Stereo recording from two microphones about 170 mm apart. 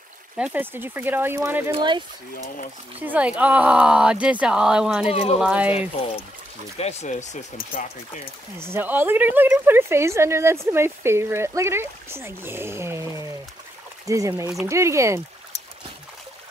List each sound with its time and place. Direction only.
0.4 s a woman's voice: 10° right (ahead or behind)
1.7 s speech: 30° right (ahead or behind)
3.0 s speech: 10° right (ahead or behind)
5.1 s speech: 35° left (ahead or behind)
5.4 s speech: 5° right (ahead or behind)
5.7 s speech: 35° left (ahead or behind); by 7.8 s 50° left (ahead or behind)
8.5 s a woman's voice: 15° right (ahead or behind)